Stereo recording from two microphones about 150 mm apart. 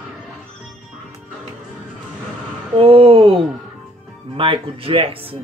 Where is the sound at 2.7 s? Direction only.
35° right (ahead or behind).